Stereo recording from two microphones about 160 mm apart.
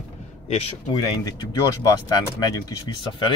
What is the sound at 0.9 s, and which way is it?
Speech, 25° left (ahead or behind).